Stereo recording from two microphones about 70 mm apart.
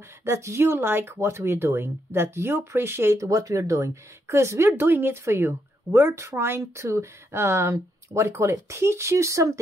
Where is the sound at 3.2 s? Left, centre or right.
Right.